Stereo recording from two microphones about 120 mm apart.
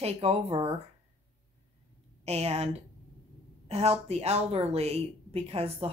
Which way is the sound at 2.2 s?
60° right (ahead or behind).